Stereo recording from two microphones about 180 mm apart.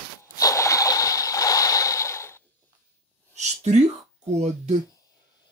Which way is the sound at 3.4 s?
40° right (ahead or behind).